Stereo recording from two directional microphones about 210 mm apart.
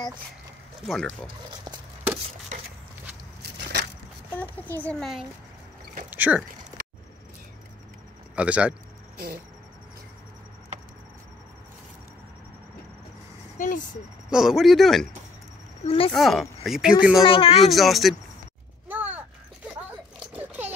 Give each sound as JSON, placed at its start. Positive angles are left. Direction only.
{"t": 0.8, "sound": "speech", "side_deg": 0}
{"t": 1.2, "sound": "speech", "side_deg": -20}
{"t": 4.3, "sound": "a child's voice", "side_deg": 10}
{"t": 8.4, "sound": "speech", "side_deg": -5}
{"t": 9.1, "sound": "speech", "side_deg": -45}
{"t": 13.6, "sound": "speech", "side_deg": 40}
{"t": 14.3, "sound": "speech", "side_deg": 0}
{"t": 15.8, "sound": "speech", "side_deg": 25}
{"t": 16.1, "sound": "speech", "side_deg": 0}
{"t": 17.2, "sound": "speech", "side_deg": 25}
{"t": 17.6, "sound": "speech", "side_deg": 0}
{"t": 18.9, "sound": "a sound", "side_deg": -10}